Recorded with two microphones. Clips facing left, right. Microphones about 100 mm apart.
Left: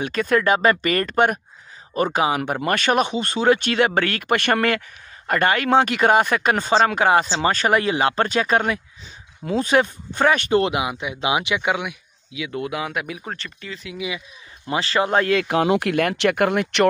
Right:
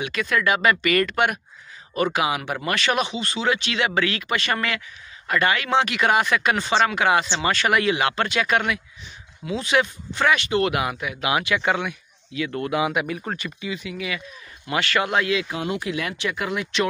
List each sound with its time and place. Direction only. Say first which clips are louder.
0.0 s speech: left 4 dB; 45° left (ahead or behind)
10.7 s speech: left 1 dB; 20° left (ahead or behind); by 13.9 s 5° right (ahead or behind)
13.9 s speech: left 1 dB; 20° left (ahead or behind)
14.7 s speech: left 2 dB; 30° left (ahead or behind)
15.1 s speech: left 5 dB; 45° left (ahead or behind)
15.4 s speech: left 8 dB; 70° left (ahead or behind)